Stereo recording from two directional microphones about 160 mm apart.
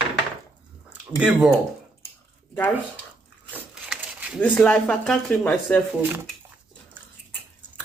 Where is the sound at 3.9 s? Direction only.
5° right (ahead or behind).